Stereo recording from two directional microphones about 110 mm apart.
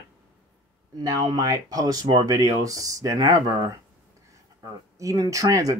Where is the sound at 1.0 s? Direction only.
35° right (ahead or behind).